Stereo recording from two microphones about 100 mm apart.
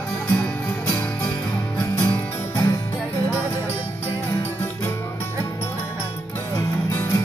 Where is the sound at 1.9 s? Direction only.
20° left (ahead or behind).